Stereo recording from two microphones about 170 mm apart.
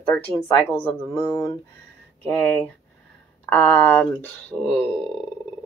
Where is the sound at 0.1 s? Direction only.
15° left (ahead or behind).